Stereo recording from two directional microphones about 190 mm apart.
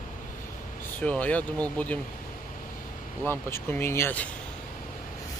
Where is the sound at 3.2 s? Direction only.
10° left (ahead or behind).